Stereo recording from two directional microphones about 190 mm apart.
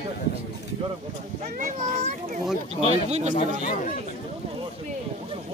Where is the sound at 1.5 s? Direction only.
40° right (ahead or behind).